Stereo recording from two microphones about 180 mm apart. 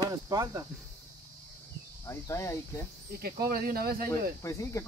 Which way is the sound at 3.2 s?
55° right (ahead or behind).